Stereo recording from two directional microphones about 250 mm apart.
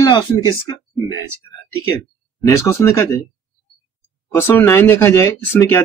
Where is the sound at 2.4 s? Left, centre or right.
Centre.